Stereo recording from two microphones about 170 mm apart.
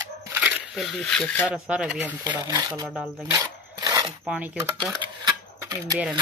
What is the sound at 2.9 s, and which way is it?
Speech, 5° right (ahead or behind).